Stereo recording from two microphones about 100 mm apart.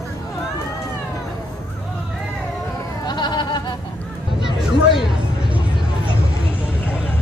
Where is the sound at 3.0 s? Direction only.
50° left (ahead or behind).